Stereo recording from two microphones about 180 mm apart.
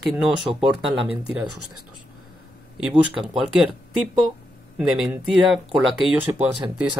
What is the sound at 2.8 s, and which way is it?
Speech, 10° right (ahead or behind).